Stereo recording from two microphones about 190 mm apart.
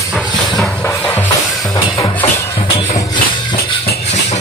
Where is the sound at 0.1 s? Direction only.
Centre (ahead or behind).